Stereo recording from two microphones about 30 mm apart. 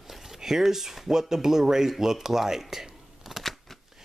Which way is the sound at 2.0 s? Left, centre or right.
Centre.